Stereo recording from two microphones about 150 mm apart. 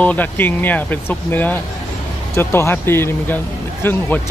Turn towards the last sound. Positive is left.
turn(degrees=10)  # may be behind; listen again after turning